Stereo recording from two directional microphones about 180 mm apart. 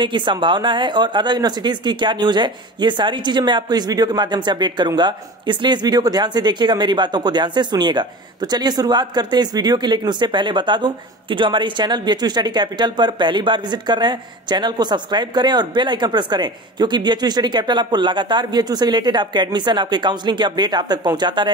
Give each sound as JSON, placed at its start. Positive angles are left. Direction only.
{"t": 0.0, "sound": "a woman's voice", "side_deg": -25}